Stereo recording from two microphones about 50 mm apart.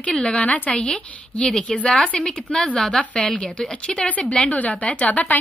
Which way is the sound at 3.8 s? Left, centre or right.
Left.